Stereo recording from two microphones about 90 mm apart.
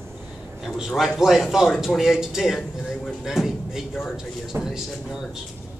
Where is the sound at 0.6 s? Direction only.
Centre (ahead or behind).